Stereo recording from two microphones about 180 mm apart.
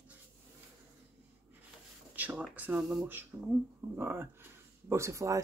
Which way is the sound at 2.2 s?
10° right (ahead or behind).